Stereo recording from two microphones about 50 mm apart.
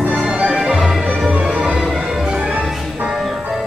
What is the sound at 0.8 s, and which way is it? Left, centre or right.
Music, centre.